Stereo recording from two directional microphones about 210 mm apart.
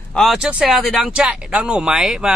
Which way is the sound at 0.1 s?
Centre (ahead or behind).